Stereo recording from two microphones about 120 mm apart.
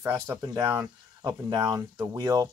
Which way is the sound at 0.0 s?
20° right (ahead or behind).